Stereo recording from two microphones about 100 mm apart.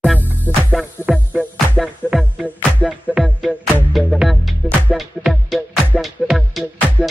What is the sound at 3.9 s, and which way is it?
Music, centre (ahead or behind).